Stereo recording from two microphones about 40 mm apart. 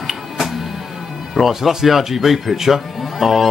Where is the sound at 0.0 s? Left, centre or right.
Centre.